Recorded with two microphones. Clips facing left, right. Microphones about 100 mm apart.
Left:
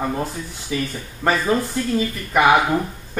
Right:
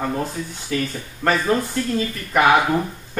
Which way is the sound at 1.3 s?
5° left (ahead or behind).